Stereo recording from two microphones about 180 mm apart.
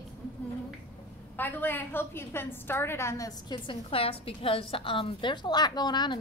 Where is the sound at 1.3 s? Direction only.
10° left (ahead or behind).